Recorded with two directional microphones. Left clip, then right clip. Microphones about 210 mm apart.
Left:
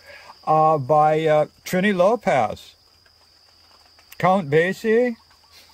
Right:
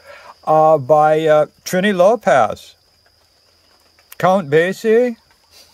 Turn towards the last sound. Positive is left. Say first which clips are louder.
# right 5 dB
turn(degrees=0)  # may be behind; listen again after turning